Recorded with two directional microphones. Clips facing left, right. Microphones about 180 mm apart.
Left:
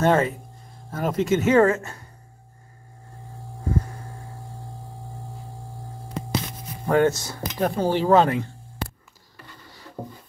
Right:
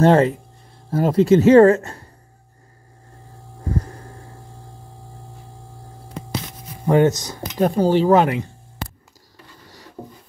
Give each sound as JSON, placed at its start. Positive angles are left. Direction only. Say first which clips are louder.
{"t": 0.0, "sound": "speech", "louder": "right 6 dB", "side_deg": -30}
{"t": 6.9, "sound": "speech", "louder": "right 4 dB", "side_deg": -20}